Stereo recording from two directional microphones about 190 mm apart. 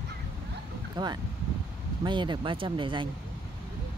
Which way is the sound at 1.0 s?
25° right (ahead or behind).